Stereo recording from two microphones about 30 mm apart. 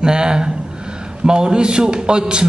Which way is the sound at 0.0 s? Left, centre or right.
Right.